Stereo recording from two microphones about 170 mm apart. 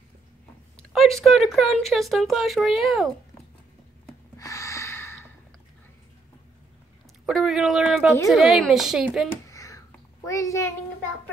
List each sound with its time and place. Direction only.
0.7 s speech: centre (ahead or behind)
4.4 s gasp: 20° left (ahead or behind)
7.2 s speech: centre (ahead or behind)
9.3 s a sound: 20° left (ahead or behind)